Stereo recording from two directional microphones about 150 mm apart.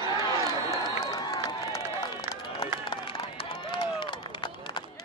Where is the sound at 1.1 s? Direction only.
25° left (ahead or behind).